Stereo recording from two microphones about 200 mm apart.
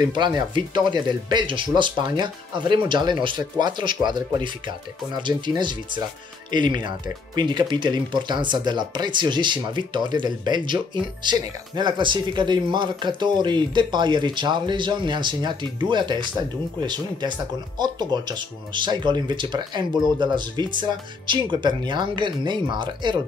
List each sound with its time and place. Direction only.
0.0 s speech: 20° right (ahead or behind)